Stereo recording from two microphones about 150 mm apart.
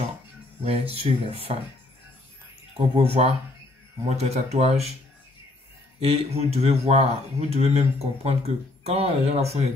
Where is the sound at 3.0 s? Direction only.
45° right (ahead or behind).